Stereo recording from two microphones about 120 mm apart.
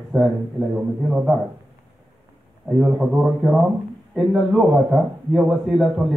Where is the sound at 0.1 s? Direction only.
15° right (ahead or behind).